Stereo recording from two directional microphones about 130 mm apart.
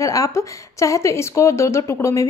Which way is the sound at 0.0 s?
25° left (ahead or behind).